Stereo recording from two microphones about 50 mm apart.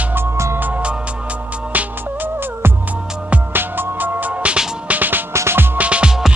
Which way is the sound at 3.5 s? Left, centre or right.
Right.